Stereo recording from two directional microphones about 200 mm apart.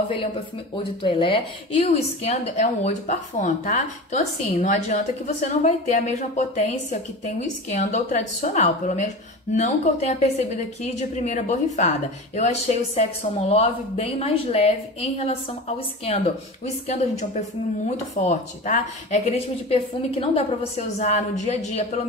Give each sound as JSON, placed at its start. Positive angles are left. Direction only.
{"t": 1.0, "sound": "a woman's voice", "side_deg": 25}
{"t": 16.6, "sound": "a woman's voice", "side_deg": 35}